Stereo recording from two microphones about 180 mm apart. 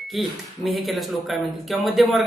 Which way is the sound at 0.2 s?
Centre (ahead or behind).